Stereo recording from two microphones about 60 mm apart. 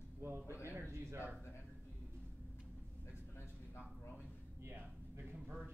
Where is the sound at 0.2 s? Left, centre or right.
Right.